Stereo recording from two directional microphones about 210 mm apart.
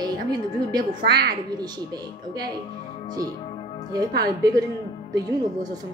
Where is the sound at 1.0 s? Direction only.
50° right (ahead or behind).